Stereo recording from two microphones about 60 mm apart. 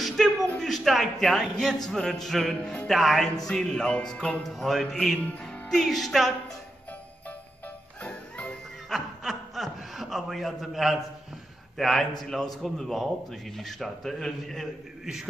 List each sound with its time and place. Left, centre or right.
0.0 s a sound: centre
1.2 s a man's voice: centre
4.4 s a man's voice: centre
5.4 s music: centre
5.9 s a man's voice: centre
8.0 s jingle bell: left
8.9 s chuckle: centre
11.8 s a man's voice: centre